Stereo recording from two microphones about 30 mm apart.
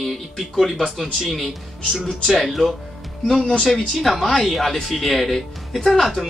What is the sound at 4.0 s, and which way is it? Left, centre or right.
Speech, centre.